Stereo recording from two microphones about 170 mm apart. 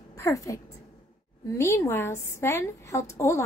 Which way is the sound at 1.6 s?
15° left (ahead or behind).